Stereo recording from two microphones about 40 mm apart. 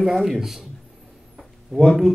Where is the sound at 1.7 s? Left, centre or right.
Centre.